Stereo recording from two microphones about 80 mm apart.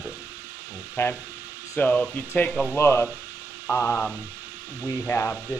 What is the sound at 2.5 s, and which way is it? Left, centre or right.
Speech, centre.